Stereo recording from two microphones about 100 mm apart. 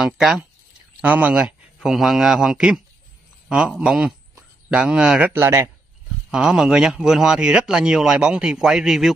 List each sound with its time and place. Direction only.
0.0 s a man's voice: 5° right (ahead or behind)
5.3 s speech: 25° right (ahead or behind)
6.3 s speech: 5° right (ahead or behind)